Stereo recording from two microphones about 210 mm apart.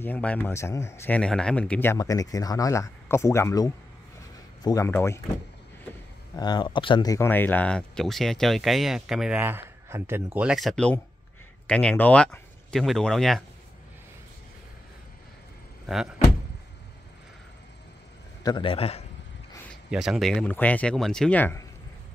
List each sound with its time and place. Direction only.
0.0 s speech: 5° left (ahead or behind)
6.3 s speech: 20° left (ahead or behind); by 13.4 s centre (ahead or behind)
15.9 s speech: centre (ahead or behind)
18.4 s a man's voice: 20° left (ahead or behind)
19.7 s speech: centre (ahead or behind)